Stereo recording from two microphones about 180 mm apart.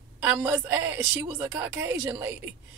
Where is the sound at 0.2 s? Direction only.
10° right (ahead or behind).